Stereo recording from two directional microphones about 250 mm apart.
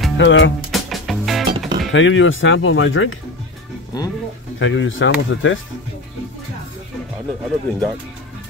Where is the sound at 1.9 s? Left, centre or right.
Left.